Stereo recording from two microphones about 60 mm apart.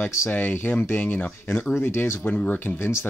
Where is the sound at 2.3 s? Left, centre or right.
Left.